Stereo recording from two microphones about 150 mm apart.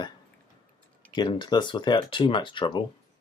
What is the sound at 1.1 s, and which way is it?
Speech, 30° left (ahead or behind).